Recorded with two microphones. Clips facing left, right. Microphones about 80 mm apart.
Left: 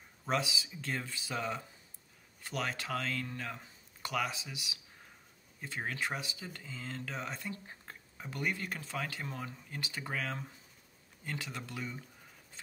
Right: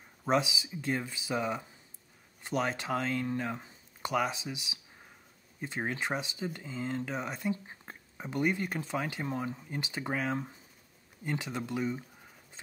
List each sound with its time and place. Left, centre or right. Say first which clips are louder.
0.2 s speech: right 5 dB; right